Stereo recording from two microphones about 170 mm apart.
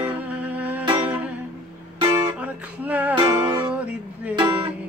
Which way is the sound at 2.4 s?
10° right (ahead or behind).